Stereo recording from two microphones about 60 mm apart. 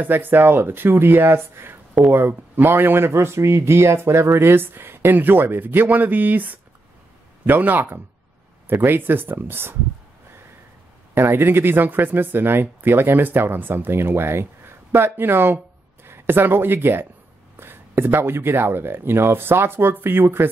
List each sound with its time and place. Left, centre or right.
0.0 s speech: right
11.3 s speech: right